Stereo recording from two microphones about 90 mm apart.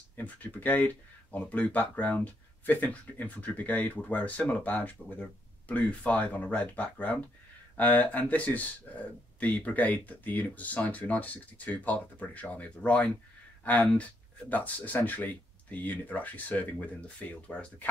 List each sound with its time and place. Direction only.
0.1 s speech: 20° left (ahead or behind)